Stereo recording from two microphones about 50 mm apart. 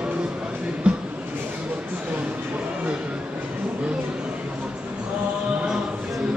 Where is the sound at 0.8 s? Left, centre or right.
Right.